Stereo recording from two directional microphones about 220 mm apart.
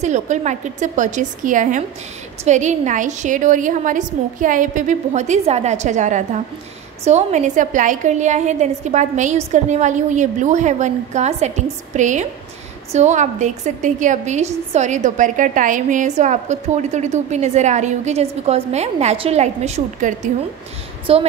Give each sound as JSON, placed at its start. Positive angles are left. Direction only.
{"t": 0.0, "sound": "a woman's voice", "side_deg": -30}